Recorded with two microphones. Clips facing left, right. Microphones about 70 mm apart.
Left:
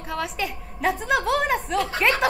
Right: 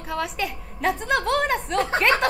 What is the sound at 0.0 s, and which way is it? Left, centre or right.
A woman's voice, centre.